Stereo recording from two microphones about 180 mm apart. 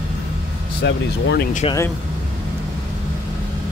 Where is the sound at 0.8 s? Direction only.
75° left (ahead or behind).